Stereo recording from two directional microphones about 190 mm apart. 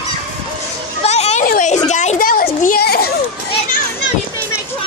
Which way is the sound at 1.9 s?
40° left (ahead or behind).